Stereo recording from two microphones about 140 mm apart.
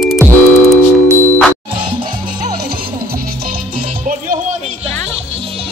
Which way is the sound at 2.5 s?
90° right.